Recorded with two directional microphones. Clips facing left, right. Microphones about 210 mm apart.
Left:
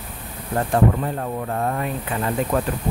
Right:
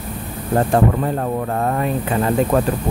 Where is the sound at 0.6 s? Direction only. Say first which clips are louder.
Right 3 dB; 50° right (ahead or behind).